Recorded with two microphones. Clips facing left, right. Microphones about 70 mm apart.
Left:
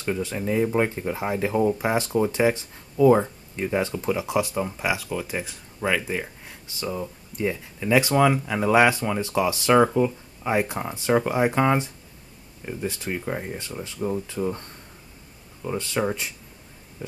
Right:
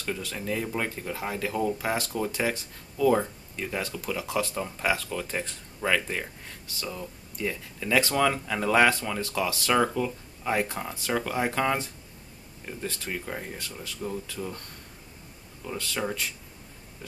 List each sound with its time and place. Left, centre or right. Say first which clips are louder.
0.0 s speech: left 6 dB; left
6.7 s speech: left 7 dB; left